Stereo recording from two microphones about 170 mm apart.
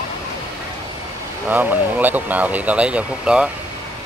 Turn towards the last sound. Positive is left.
turn(degrees=-5)  # may be behind; listen again after turning